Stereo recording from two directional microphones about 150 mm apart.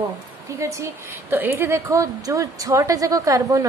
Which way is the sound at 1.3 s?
15° right (ahead or behind).